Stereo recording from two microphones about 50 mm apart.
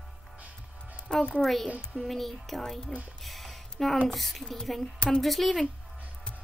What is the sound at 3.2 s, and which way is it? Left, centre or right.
Music, centre.